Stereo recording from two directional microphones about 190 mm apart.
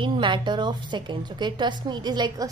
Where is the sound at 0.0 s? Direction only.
25° right (ahead or behind).